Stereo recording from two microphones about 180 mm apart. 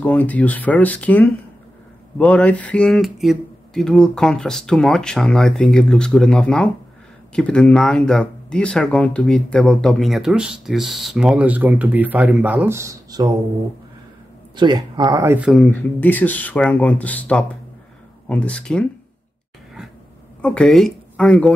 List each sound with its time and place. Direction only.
0.0 s speech: 10° left (ahead or behind); by 13.3 s 20° right (ahead or behind)
14.5 s speech: 25° right (ahead or behind)
15.3 s speech: 5° right (ahead or behind)
15.6 s speech: 10° left (ahead or behind)
20.4 s speech: 5° left (ahead or behind)